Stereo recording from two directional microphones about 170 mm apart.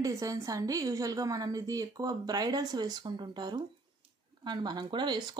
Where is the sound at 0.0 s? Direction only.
20° right (ahead or behind).